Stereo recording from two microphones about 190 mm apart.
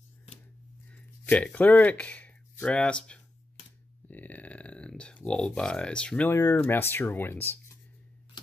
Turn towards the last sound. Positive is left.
turn(degrees=10)  # may be behind; listen again after turning